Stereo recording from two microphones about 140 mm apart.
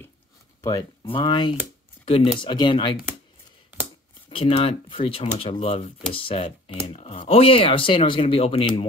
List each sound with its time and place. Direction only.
0.6 s speech: 25° left (ahead or behind)
2.0 s speech: 45° left (ahead or behind)
4.3 s speech: 40° left (ahead or behind)
7.0 s speech: 50° left (ahead or behind)